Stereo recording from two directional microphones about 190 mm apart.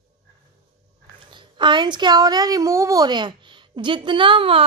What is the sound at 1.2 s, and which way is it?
A woman's voice, 25° right (ahead or behind).